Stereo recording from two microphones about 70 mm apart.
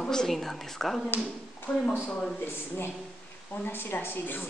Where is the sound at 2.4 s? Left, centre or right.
Left.